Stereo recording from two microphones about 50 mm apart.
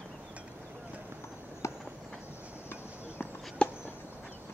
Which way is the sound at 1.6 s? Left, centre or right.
Left.